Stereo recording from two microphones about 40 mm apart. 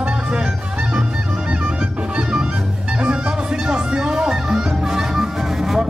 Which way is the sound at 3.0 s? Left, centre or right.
Right.